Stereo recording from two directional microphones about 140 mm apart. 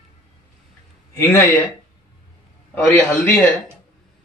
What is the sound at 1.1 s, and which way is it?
Speech, 15° left (ahead or behind).